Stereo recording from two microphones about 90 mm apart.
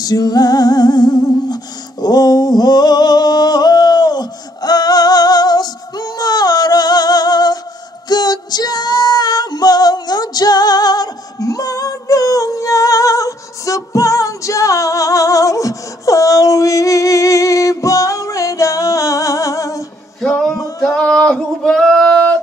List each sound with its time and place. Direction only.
0.0 s music: 45° left (ahead or behind)
8.1 s female singing: 50° left (ahead or behind)
20.2 s music: 5° left (ahead or behind)
20.8 s singing: 5° left (ahead or behind)